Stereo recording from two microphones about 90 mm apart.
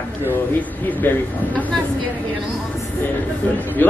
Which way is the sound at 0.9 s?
20° left (ahead or behind).